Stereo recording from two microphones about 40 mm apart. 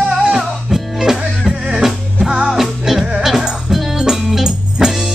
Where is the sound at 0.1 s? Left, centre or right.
Centre.